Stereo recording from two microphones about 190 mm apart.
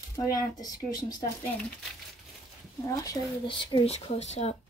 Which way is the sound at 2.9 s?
20° left (ahead or behind).